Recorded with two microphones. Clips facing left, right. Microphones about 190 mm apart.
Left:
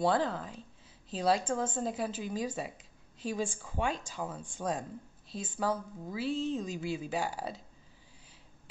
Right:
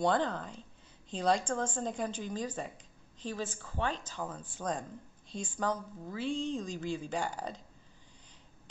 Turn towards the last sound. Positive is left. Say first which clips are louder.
# left 1 dB
turn(degrees=5)  # may be behind; listen again after turning